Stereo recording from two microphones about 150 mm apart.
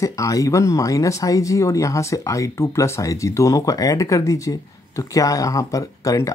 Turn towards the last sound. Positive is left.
turn(degrees=20)  # may be behind; listen again after turning